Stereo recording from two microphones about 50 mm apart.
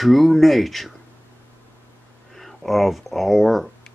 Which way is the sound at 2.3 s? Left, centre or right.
Centre.